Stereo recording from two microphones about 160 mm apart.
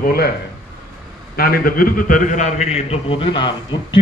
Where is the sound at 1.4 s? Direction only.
65° left (ahead or behind).